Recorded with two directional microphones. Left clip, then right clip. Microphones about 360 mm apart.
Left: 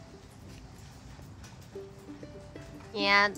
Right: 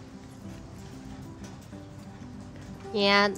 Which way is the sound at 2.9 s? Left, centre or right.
Centre.